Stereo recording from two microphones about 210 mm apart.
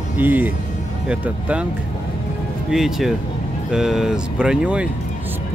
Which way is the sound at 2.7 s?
Centre (ahead or behind).